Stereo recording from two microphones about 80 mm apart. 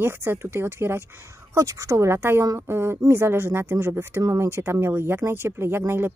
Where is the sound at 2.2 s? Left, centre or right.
Right.